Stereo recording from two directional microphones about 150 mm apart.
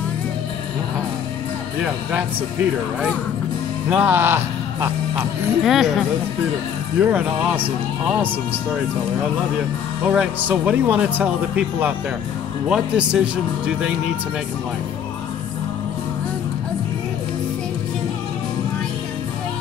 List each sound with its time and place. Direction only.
3.9 s speech: 15° right (ahead or behind)
5.6 s speech: centre (ahead or behind)
7.0 s speech: 10° right (ahead or behind)
10.0 s speech: 10° right (ahead or behind)